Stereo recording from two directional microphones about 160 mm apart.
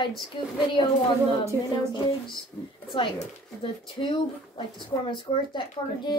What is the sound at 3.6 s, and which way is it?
A woman's voice, 30° left (ahead or behind).